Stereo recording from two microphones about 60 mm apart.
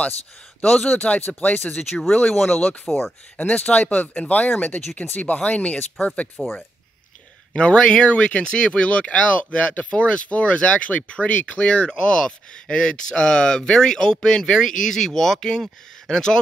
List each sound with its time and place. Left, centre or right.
0.8 s speech: left
1.7 s speech: centre
3.3 s speech: left
7.5 s speech: centre